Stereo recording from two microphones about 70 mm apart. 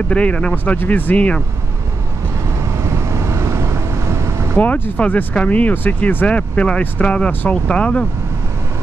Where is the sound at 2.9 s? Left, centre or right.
Right.